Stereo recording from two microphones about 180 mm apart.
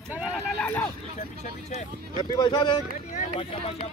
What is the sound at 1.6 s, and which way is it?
Speech, 40° left (ahead or behind).